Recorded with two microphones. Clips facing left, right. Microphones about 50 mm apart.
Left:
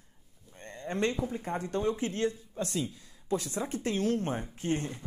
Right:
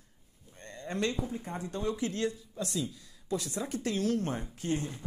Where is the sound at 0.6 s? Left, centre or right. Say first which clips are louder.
Left 2 dB; left.